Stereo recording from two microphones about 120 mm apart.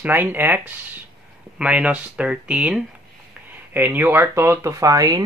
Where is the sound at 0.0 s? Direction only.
15° right (ahead or behind).